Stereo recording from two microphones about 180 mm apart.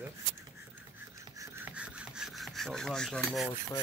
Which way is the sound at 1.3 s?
10° right (ahead or behind).